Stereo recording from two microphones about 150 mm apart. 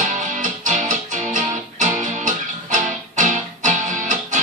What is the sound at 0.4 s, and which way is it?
Music, 55° right (ahead or behind).